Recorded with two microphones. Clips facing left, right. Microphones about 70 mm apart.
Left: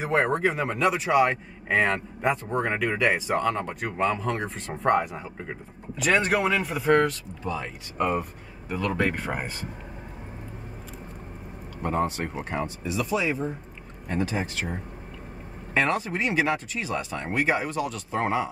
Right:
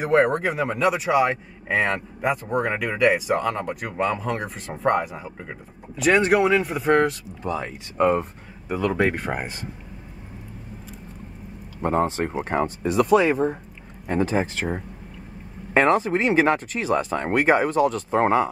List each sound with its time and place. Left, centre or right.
0.0 s speech: centre
6.9 s speech: centre
7.4 s speech: right
8.2 s speech: centre
11.8 s speech: right
14.0 s speech: right
16.4 s speech: right